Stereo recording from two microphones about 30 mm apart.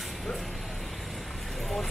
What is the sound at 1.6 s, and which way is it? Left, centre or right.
Vehicle, centre.